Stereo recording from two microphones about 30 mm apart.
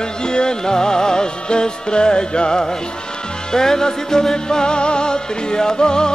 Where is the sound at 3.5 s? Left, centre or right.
Centre.